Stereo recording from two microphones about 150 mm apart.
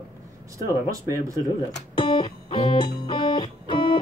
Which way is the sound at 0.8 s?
20° right (ahead or behind).